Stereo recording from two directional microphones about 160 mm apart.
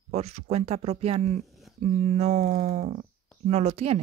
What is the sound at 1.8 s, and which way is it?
Speech, 45° right (ahead or behind).